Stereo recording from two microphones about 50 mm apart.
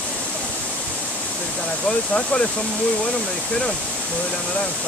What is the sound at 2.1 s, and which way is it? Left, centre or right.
Speech, left.